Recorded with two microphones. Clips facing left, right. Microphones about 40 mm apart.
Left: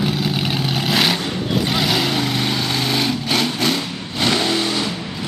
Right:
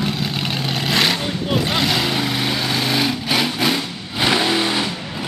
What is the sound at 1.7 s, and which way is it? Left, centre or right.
Lawn mower, centre.